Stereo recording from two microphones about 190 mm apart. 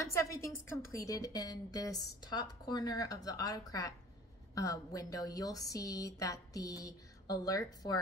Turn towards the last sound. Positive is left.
turn(degrees=20)  # may be behind; listen again after turning